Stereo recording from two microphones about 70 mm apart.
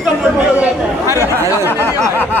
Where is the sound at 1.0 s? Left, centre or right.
Left.